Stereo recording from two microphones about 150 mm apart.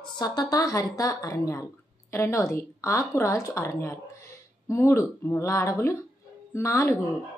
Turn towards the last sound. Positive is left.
turn(degrees=20)  # may be behind; listen again after turning